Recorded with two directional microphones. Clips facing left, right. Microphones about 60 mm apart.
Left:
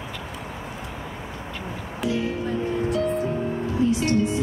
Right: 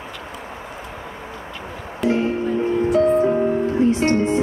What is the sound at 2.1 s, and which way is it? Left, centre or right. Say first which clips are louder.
Music: right 6 dB; right.